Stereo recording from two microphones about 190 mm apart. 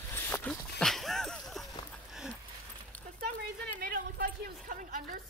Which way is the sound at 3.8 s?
50° right (ahead or behind).